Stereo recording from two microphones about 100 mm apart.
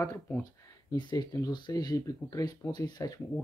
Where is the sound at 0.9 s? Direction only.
40° left (ahead or behind).